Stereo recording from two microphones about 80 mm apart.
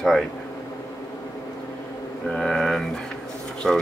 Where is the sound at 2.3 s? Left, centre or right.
Centre.